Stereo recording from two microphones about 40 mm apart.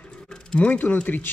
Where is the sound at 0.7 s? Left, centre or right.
Left.